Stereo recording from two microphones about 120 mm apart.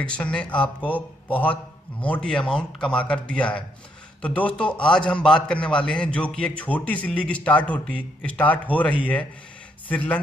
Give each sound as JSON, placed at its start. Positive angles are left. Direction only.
{"t": 0.0, "sound": "speech", "side_deg": 10}